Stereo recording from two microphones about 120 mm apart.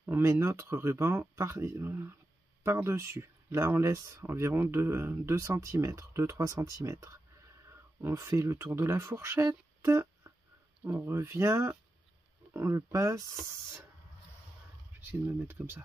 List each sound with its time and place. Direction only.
0.0 s speech: 20° right (ahead or behind)
15.0 s speech: 20° right (ahead or behind)